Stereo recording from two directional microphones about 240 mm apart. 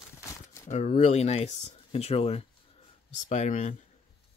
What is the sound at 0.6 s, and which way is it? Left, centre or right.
Speech, left.